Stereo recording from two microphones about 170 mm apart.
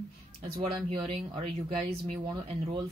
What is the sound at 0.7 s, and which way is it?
Speech, 35° right (ahead or behind).